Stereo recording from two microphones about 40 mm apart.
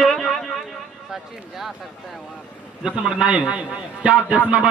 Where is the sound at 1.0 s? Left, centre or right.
Centre.